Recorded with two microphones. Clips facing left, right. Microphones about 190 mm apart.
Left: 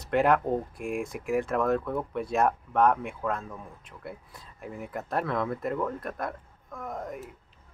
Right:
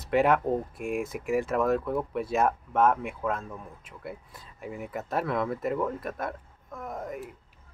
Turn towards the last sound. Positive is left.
turn(degrees=0)  # may be behind; listen again after turning